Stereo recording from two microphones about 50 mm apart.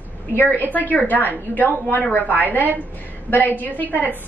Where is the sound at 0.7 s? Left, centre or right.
Left.